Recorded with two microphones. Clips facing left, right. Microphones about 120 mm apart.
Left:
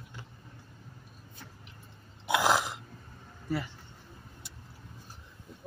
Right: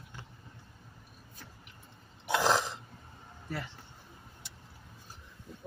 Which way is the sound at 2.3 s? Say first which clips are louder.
Left 1 dB; 10° left (ahead or behind).